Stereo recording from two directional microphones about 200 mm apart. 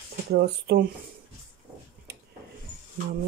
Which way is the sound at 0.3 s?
55° right (ahead or behind).